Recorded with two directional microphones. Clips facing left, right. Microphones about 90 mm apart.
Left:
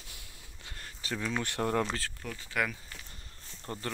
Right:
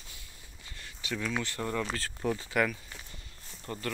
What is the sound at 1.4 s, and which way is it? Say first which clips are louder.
Speech: left 3 dB; 60° left (ahead or behind).